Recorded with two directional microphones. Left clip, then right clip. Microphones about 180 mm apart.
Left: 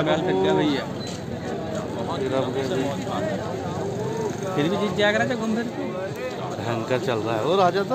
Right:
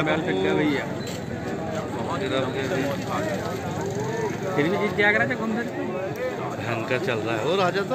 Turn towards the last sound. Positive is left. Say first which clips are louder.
# left 3 dB
turn(degrees=30)  # may be behind; listen again after turning